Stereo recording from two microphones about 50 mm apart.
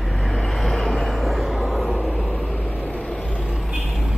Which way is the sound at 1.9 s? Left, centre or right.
Centre.